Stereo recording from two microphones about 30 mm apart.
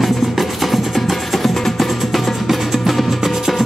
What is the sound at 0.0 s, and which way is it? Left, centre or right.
Music, centre.